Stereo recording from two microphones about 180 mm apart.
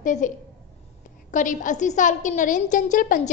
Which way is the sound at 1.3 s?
45° left (ahead or behind).